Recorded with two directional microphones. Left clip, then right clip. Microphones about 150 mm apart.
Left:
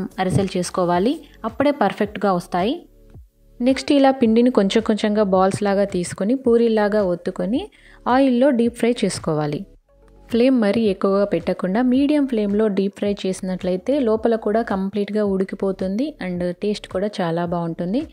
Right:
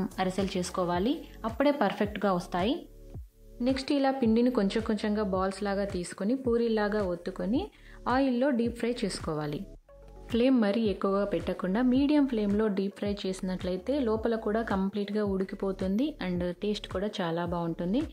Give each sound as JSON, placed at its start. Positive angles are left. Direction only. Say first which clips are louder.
{"t": 0.1, "sound": "a woman's voice", "louder": "left 11 dB", "side_deg": 35}
{"t": 3.6, "sound": "speech", "louder": "left 12 dB", "side_deg": 45}
{"t": 10.6, "sound": "a woman's voice", "louder": "left 10 dB", "side_deg": 40}